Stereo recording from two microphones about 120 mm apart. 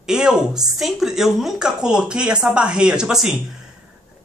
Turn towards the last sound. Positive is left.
turn(degrees=-5)  # may be behind; listen again after turning